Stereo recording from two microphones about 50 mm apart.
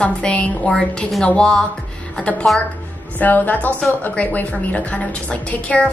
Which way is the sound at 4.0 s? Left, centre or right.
Left.